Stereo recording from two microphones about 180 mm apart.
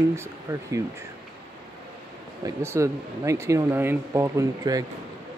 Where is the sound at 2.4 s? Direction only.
15° right (ahead or behind).